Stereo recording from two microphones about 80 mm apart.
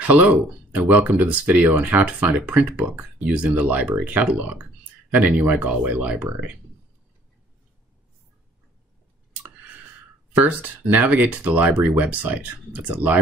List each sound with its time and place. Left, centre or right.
0.0 s speech: centre
10.3 s speech: centre